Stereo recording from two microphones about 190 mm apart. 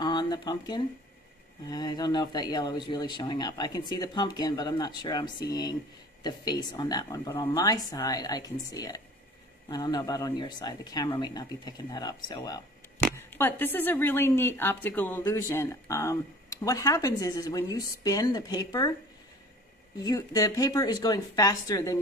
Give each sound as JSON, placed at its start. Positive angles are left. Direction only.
{"t": 0.0, "sound": "a sound", "side_deg": 20}
{"t": 1.7, "sound": "speech", "side_deg": 20}
{"t": 20.0, "sound": "speech", "side_deg": 20}